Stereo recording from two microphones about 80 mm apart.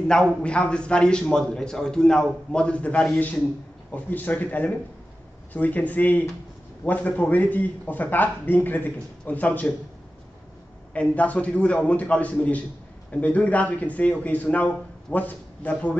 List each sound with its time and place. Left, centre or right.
0.1 s a man's voice: centre
10.9 s a man's voice: centre